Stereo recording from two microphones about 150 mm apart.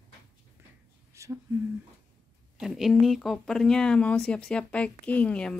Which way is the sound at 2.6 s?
Centre (ahead or behind).